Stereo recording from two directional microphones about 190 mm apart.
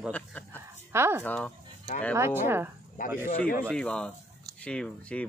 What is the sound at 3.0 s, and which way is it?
Speech, 45° left (ahead or behind).